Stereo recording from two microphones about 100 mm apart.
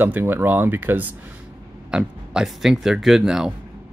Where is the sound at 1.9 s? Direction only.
5° right (ahead or behind).